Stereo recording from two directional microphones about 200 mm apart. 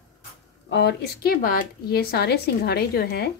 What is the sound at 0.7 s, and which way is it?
Speech, 55° left (ahead or behind).